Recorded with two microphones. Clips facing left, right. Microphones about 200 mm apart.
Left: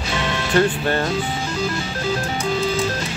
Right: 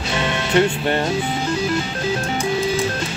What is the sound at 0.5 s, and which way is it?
Speech, 25° right (ahead or behind).